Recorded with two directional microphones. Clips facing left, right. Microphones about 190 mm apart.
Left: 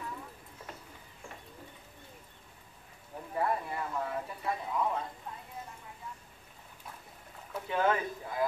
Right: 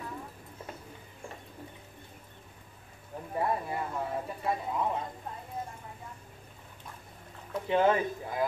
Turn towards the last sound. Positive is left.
turn(degrees=-20)  # may be behind; listen again after turning